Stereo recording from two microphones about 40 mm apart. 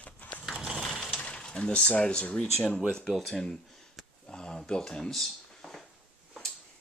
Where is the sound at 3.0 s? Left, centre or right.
Centre.